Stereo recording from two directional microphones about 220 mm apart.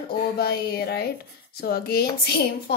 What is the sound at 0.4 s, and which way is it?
Speech, 45° left (ahead or behind).